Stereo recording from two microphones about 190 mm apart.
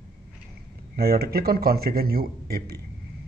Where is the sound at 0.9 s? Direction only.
55° right (ahead or behind).